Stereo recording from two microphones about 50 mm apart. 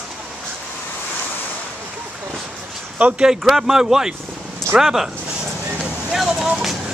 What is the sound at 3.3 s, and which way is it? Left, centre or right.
Speech, centre.